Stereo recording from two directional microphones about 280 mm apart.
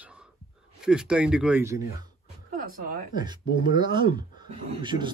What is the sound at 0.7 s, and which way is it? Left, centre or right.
Speech, centre.